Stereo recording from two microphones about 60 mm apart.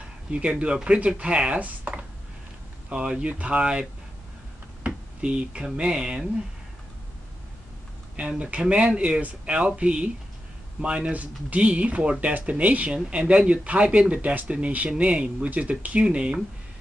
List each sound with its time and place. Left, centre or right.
0.3 s speech: centre
4.8 s a sound: centre
5.8 s speech: centre
8.5 s speech: right